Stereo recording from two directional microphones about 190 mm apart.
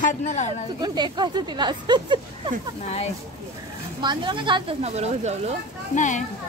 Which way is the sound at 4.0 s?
25° right (ahead or behind).